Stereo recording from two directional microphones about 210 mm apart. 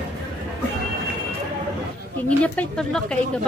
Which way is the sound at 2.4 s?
5° left (ahead or behind).